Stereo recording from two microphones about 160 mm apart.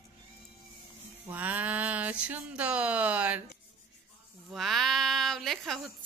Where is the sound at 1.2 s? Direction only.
10° right (ahead or behind).